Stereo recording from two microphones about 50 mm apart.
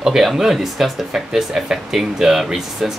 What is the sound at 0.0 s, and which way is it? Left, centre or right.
Speech, centre.